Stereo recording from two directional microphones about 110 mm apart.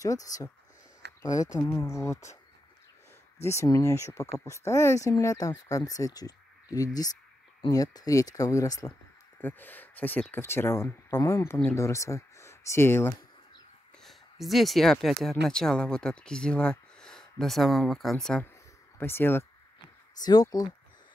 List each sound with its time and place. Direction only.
0.0 s speech: 30° left (ahead or behind)
3.3 s speech: 25° left (ahead or behind)
9.4 s speech: 15° left (ahead or behind)
14.0 s speech: centre (ahead or behind)
18.9 s speech: 20° left (ahead or behind)
20.2 s speech: 35° left (ahead or behind)